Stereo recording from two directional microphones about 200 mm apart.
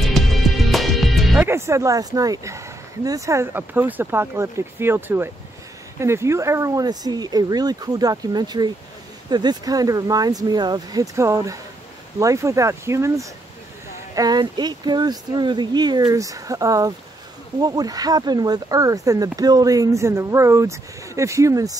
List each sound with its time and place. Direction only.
0.0 s music: centre (ahead or behind)
1.4 s speech: 15° right (ahead or behind)